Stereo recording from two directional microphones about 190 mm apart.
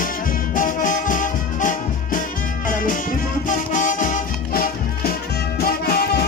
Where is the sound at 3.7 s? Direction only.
45° left (ahead or behind).